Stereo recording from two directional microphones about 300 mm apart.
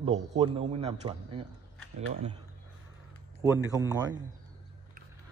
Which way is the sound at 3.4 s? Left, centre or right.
Centre.